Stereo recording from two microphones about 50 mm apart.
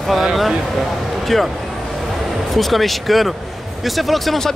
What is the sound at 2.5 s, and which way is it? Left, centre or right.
Speech, centre.